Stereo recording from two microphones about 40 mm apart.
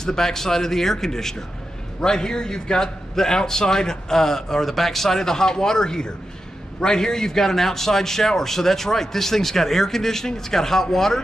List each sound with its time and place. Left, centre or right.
0.0 s a man's voice: centre